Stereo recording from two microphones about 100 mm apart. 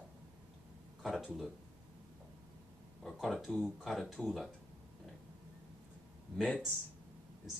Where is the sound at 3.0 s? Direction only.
Centre (ahead or behind).